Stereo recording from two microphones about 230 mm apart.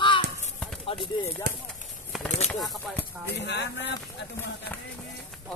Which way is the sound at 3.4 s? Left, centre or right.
Left.